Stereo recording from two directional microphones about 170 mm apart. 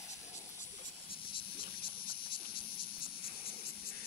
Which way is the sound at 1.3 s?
30° left (ahead or behind).